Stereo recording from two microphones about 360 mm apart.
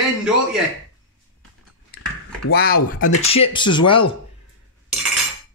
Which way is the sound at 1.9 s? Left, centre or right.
Left.